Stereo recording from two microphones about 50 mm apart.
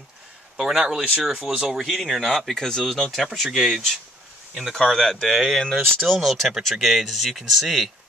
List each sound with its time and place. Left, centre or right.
0.6 s speech: centre
3.4 s speech: centre
4.8 s speech: centre